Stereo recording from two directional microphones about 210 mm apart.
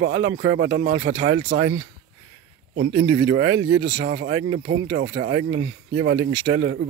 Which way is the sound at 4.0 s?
60° right (ahead or behind).